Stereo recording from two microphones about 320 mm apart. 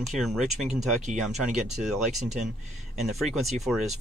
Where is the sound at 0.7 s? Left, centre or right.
Right.